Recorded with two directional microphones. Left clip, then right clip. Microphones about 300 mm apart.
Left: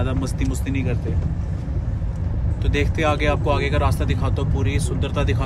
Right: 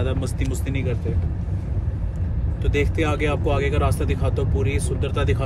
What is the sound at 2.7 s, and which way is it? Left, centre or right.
Speech, centre.